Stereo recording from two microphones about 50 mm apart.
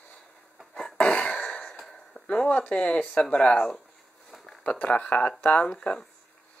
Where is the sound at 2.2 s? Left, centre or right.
Left.